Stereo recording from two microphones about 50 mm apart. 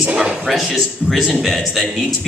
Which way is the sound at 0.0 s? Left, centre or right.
Centre.